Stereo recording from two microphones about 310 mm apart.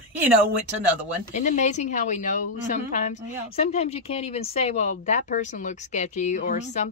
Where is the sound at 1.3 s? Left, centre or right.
Left.